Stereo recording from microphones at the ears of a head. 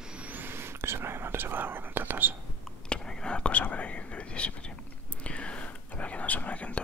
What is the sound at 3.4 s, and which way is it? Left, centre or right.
Whispering, left.